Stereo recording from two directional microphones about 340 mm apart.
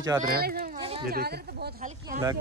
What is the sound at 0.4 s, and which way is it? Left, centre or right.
Speech, right.